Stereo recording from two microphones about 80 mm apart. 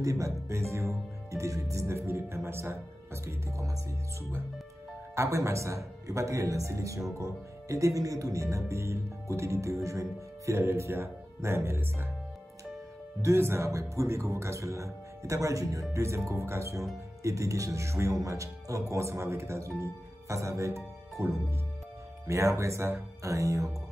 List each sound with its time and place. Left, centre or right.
0.0 s speech: right
5.1 s speech: right
13.2 s speech: right